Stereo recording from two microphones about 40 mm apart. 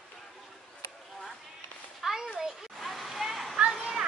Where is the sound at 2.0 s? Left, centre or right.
Centre.